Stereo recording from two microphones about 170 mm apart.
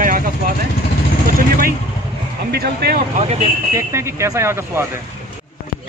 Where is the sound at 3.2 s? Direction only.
40° right (ahead or behind).